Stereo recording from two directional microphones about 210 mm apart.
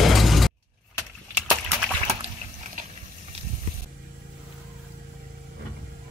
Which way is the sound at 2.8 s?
40° right (ahead or behind).